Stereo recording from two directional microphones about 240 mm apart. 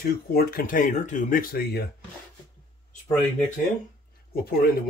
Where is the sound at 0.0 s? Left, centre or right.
Left.